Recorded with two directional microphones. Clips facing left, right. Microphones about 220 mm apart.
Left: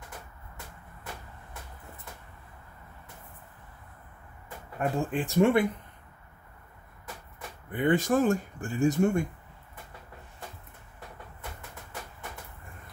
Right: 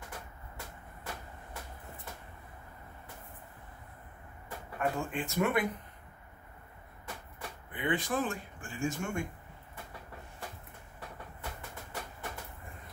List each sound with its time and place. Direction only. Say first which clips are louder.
4.7 s speech: left 5 dB; 35° left (ahead or behind)
7.7 s speech: left 8 dB; 45° left (ahead or behind)